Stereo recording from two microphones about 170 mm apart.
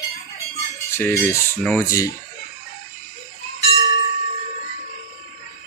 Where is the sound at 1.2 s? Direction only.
10° left (ahead or behind).